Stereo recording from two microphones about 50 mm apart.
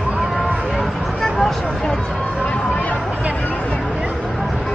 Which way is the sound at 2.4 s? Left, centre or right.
Left.